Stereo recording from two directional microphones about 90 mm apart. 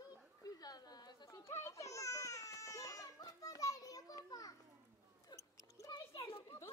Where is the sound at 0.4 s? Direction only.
45° left (ahead or behind).